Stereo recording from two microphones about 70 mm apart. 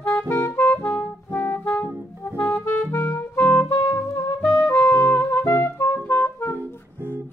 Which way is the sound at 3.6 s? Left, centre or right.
Left.